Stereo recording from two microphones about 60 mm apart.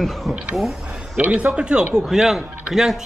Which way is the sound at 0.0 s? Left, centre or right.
Centre.